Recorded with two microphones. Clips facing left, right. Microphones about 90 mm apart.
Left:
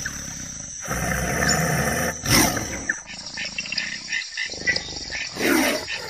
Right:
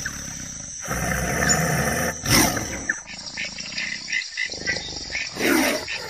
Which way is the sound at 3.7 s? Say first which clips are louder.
Right 1 dB; 45° left (ahead or behind).